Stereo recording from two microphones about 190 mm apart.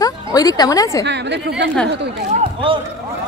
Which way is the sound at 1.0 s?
65° right (ahead or behind).